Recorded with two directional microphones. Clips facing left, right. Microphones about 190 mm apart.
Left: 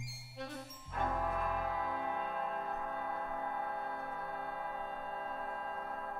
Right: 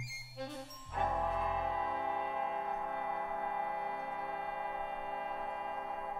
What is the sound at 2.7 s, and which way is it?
Brass instrument, 15° right (ahead or behind).